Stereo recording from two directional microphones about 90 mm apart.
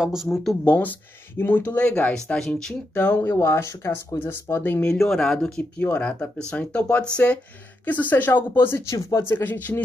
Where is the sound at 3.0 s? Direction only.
20° left (ahead or behind).